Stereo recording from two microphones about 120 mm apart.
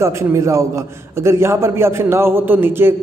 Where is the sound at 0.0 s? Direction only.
25° right (ahead or behind).